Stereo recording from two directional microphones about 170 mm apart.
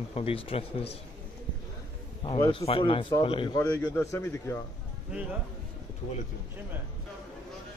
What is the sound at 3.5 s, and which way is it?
Speech, 10° left (ahead or behind).